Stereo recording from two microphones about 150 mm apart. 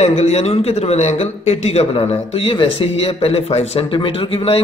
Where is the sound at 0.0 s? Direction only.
45° left (ahead or behind).